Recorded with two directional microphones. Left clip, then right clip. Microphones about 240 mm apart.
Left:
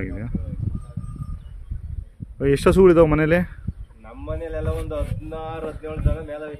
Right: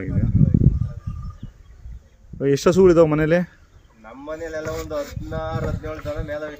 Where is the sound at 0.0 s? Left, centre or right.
Centre.